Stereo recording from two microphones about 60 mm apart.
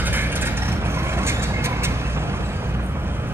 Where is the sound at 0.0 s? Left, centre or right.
Right.